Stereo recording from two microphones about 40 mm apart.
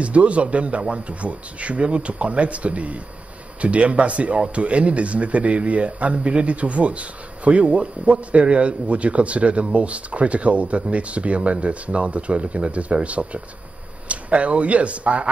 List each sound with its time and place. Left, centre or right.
0.0 s speech: right